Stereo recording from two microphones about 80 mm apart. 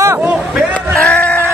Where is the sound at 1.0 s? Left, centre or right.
Centre.